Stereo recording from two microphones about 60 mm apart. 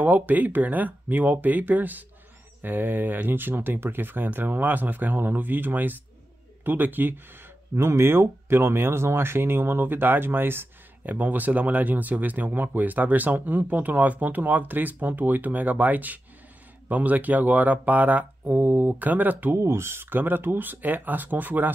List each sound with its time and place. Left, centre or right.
0.0 s speech: right
7.7 s speech: right
19.5 s speech: right